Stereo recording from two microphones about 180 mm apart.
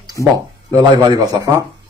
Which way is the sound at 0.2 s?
20° right (ahead or behind).